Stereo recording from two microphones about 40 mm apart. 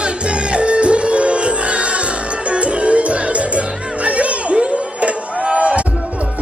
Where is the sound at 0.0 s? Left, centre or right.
Right.